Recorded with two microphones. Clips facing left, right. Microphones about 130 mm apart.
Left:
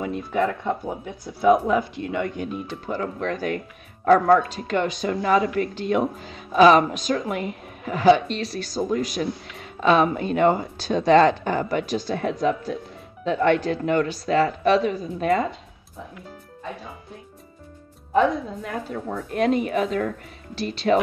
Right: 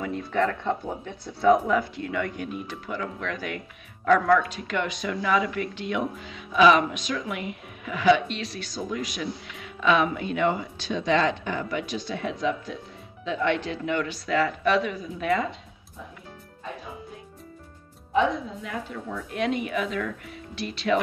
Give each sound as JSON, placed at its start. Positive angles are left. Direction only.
{"t": 0.0, "sound": "speech", "side_deg": 20}
{"t": 1.4, "sound": "a woman's voice", "side_deg": 20}
{"t": 18.6, "sound": "a woman's voice", "side_deg": 45}